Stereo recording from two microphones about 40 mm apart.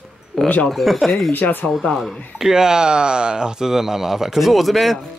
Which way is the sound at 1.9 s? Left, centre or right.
Centre.